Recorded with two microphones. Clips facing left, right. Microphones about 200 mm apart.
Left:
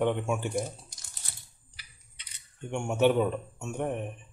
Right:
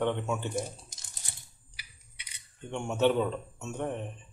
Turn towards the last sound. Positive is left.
turn(degrees=15)  # may be behind; listen again after turning